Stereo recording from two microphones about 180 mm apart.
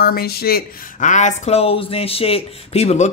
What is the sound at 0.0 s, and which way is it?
Speech, 60° left (ahead or behind).